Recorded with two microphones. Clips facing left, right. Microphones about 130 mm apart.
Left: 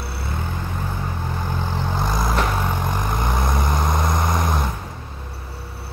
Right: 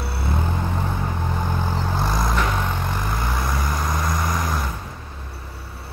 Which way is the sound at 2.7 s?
15° left (ahead or behind).